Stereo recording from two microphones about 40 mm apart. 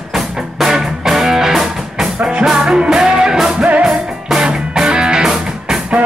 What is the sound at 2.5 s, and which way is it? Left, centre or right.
Music, right.